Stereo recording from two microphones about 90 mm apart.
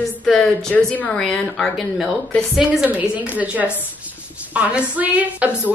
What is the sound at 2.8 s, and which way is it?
A woman's voice, 15° right (ahead or behind).